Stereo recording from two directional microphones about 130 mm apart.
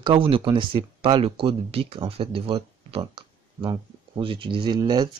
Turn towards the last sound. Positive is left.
turn(degrees=-30)  # may be behind; listen again after turning